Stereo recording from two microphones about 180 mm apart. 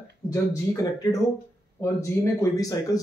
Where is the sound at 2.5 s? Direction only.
20° left (ahead or behind).